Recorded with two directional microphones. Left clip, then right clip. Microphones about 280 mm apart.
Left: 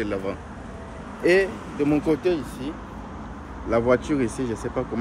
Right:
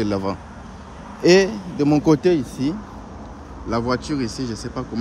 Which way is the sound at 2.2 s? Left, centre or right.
Right.